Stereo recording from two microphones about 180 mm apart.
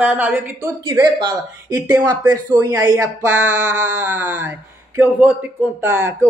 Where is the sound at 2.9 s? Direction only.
10° right (ahead or behind).